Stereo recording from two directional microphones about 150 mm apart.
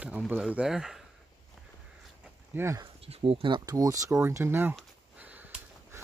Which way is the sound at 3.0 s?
40° right (ahead or behind).